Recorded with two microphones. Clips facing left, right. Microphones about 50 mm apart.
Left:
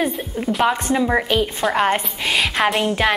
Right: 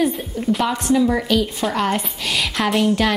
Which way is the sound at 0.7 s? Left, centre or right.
Left.